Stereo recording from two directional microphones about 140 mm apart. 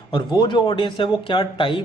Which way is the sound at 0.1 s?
35° left (ahead or behind).